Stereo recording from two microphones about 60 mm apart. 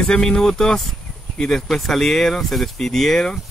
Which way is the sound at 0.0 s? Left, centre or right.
Centre.